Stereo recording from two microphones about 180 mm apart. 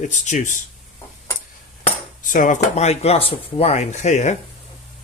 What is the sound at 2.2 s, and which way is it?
Speech, 45° left (ahead or behind).